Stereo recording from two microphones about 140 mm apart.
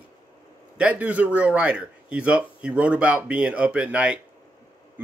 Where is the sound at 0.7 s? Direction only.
10° right (ahead or behind).